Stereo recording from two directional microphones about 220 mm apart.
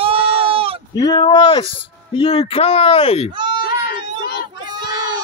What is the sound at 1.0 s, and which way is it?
Speech, 20° left (ahead or behind).